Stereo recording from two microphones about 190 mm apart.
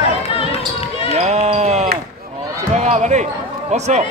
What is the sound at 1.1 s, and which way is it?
Basketball bounce, 35° right (ahead or behind).